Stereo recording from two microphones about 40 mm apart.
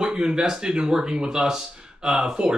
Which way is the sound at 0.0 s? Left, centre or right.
Centre.